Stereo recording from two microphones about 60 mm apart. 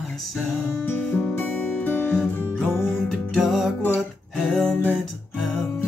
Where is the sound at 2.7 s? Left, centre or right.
Left.